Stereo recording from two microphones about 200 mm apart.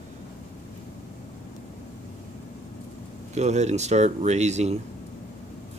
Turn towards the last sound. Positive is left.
turn(degrees=-35)  # may be behind; listen again after turning